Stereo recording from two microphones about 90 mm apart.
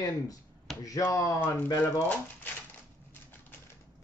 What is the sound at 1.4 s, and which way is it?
Speech, 20° left (ahead or behind).